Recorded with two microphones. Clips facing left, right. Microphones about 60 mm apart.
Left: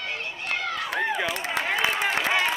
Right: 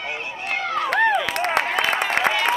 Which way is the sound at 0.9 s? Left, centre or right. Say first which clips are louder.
Right 8 dB; right.